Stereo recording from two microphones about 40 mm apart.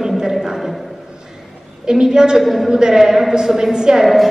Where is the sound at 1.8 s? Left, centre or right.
Centre.